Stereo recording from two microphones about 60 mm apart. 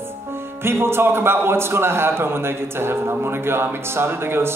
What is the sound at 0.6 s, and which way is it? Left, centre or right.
Speech, right.